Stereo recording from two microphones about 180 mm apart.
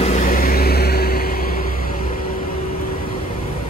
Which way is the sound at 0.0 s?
40° left (ahead or behind).